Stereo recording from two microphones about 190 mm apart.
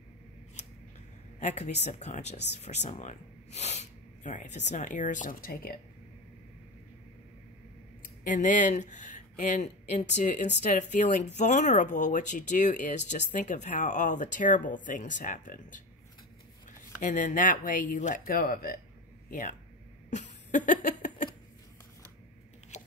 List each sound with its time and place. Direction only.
1.4 s speech: 35° left (ahead or behind)
8.0 s speech: 45° left (ahead or behind)
17.0 s speech: 45° left (ahead or behind)
20.1 s a sound: 40° left (ahead or behind)